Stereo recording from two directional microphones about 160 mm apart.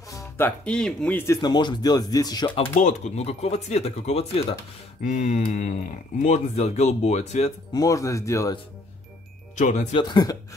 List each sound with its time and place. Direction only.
0.1 s speech: 15° left (ahead or behind)
2.8 s speech: 40° left (ahead or behind)
5.0 s speech: 50° left (ahead or behind)
7.7 s speech: 20° left (ahead or behind)
9.6 s speech: 50° left (ahead or behind)
9.9 s speech: 25° left (ahead or behind)